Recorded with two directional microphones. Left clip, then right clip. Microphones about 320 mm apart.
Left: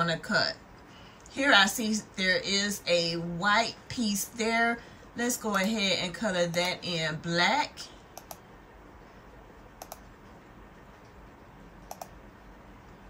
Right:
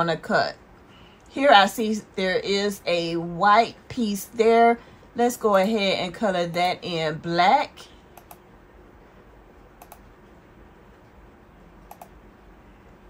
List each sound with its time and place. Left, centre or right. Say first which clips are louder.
0.0 s a woman's voice: right 5 dB; centre